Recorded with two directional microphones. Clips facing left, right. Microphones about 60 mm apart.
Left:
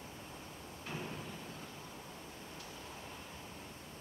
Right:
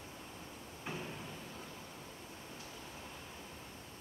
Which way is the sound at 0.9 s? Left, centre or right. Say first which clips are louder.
Right 1 dB; right.